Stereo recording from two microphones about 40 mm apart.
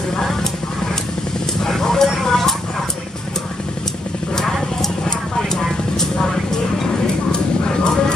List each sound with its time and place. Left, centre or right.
1.6 s a sound: centre
5.5 s vehicle: centre
7.3 s vehicle: centre